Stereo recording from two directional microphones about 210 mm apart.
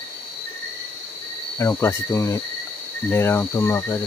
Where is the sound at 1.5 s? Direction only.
15° left (ahead or behind).